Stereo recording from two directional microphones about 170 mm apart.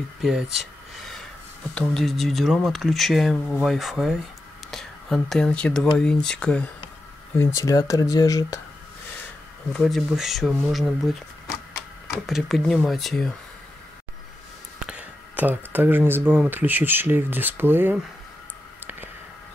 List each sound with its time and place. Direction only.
0.2 s a sound: 5° right (ahead or behind)
1.8 s speech: centre (ahead or behind)
7.3 s speech: 20° left (ahead or behind)
9.7 s speech: centre (ahead or behind)
12.3 s speech: centre (ahead or behind)
14.9 s speech: 10° right (ahead or behind)